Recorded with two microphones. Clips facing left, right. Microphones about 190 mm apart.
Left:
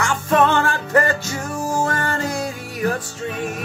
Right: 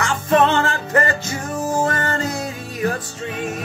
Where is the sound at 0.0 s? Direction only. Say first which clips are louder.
Right 1 dB; 20° right (ahead or behind).